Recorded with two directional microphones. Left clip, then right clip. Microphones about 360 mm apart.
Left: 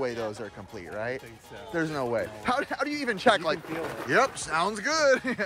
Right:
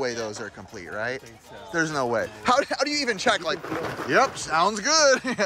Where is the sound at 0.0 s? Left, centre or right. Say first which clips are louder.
Right 2 dB; centre.